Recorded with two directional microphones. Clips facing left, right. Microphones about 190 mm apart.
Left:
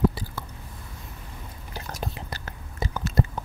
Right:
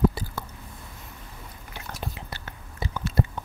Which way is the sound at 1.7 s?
40° left (ahead or behind).